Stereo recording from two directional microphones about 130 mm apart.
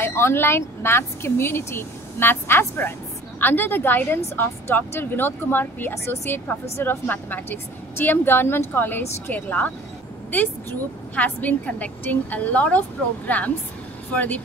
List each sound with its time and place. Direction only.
0.0 s a woman's voice: 20° left (ahead or behind)